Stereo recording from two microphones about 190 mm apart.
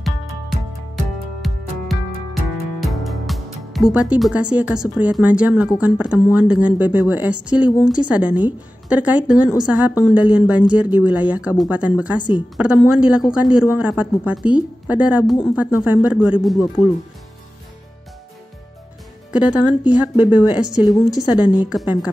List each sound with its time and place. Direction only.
0.0 s music: centre (ahead or behind)
2.8 s a woman's voice: centre (ahead or behind)
16.5 s speech: 25° left (ahead or behind)
19.3 s a woman's voice: 5° right (ahead or behind)
20.8 s speech: 20° left (ahead or behind)
21.1 s a woman's voice: centre (ahead or behind)